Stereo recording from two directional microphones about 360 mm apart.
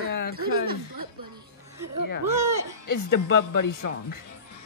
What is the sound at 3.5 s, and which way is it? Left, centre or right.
Speech, left.